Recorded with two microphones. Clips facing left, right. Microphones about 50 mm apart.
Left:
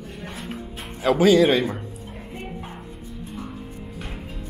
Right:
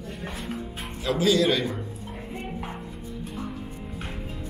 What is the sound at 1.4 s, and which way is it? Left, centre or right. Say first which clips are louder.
Speech: left 5 dB; left.